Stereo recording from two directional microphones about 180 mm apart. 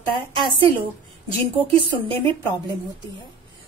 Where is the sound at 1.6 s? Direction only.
30° right (ahead or behind).